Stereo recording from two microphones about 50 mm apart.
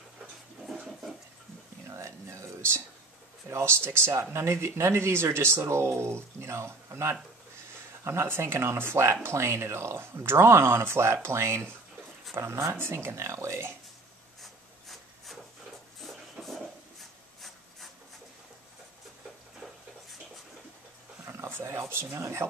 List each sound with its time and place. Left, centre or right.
1.9 s whispering: right
3.4 s speech: right
4.1 s speech: right
14.4 s rub: centre
16.0 s a sound: centre
21.3 s a sound: right